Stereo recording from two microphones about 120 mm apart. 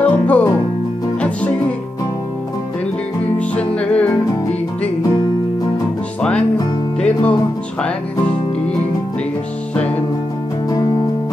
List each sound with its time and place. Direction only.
0.0 s music: 10° left (ahead or behind)
3.3 s music: 10° left (ahead or behind)
7.0 s music: 10° left (ahead or behind)
9.8 s music: 10° left (ahead or behind)
10.7 s music: 30° left (ahead or behind)